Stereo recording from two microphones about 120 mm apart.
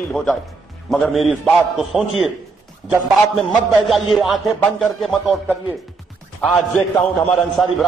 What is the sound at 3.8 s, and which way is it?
A man's voice, centre (ahead or behind).